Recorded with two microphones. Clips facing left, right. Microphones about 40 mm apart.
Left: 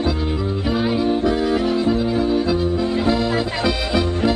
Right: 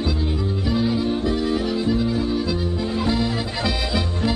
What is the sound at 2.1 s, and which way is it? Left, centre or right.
Music, left.